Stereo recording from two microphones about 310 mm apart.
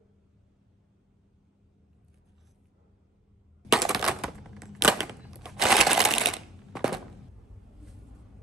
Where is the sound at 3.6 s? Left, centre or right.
Centre.